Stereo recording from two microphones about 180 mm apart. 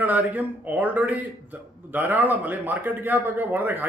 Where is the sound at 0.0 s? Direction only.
10° right (ahead or behind).